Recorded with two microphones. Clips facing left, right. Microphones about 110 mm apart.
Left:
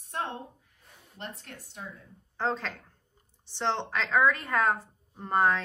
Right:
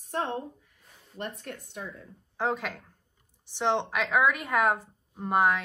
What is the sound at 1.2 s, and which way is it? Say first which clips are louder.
Speech: right 5 dB; 55° right (ahead or behind).